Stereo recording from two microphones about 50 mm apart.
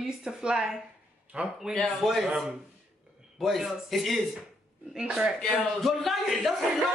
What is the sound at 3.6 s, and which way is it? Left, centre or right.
Speech, centre.